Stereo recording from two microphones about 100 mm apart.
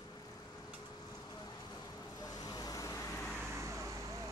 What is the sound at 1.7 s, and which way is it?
Vehicle, 40° left (ahead or behind).